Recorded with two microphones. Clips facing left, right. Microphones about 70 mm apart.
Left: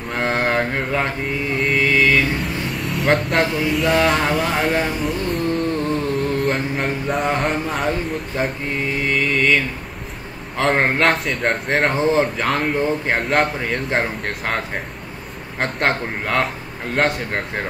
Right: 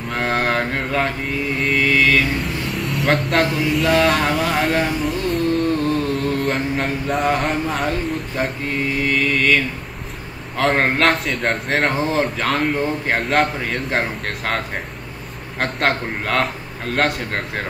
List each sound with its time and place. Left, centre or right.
0.1 s mantra: centre
1.6 s speech: centre
5.8 s a sound: centre
6.4 s a man's voice: centre
10.6 s a man's voice: centre
15.6 s speech: centre